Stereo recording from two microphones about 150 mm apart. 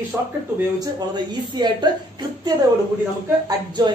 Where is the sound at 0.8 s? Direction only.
30° right (ahead or behind).